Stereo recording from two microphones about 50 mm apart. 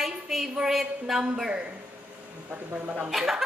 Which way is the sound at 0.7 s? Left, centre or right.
Centre.